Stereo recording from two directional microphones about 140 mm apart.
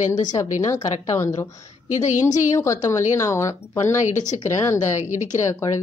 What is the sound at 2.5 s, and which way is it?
Speech, 20° left (ahead or behind).